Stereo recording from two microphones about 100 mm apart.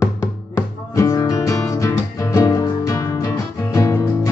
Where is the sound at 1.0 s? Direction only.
35° left (ahead or behind).